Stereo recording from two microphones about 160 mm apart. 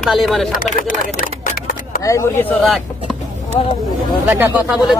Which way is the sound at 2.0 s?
20° left (ahead or behind).